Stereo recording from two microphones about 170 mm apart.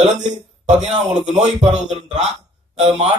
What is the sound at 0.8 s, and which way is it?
A man's voice, 40° right (ahead or behind).